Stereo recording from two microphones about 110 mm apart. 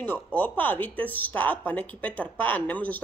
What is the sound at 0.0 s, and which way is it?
Speech, 15° left (ahead or behind).